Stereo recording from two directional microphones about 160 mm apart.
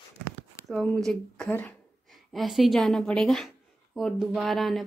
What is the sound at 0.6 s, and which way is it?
A woman's voice, 5° left (ahead or behind).